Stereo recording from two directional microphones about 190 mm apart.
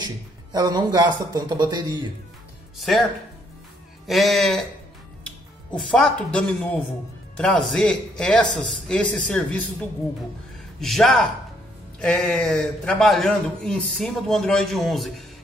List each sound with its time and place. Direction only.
0.0 s speech: 20° right (ahead or behind)
4.1 s a man's voice: centre (ahead or behind)